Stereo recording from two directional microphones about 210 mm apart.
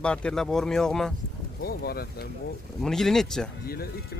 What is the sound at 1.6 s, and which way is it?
Speech, 45° left (ahead or behind).